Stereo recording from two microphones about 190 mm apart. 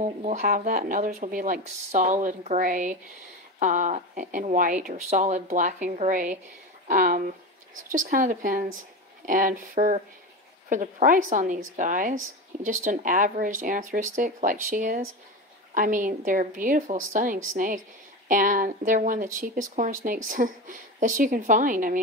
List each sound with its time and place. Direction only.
0.0 s speech: 40° right (ahead or behind)